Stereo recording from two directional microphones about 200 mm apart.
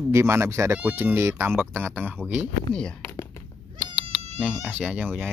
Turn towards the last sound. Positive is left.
turn(degrees=-10)  # may be behind; listen again after turning